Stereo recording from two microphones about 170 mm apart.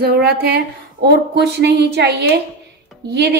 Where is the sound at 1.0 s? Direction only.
80° right.